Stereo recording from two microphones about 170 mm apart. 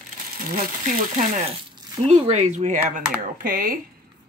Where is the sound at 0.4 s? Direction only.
55° right (ahead or behind).